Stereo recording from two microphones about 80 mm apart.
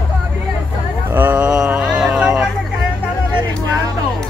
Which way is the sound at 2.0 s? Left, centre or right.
Centre.